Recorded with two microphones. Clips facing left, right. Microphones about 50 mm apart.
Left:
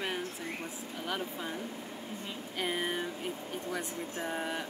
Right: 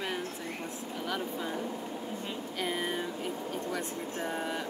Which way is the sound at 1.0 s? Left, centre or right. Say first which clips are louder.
Right 2 dB; centre.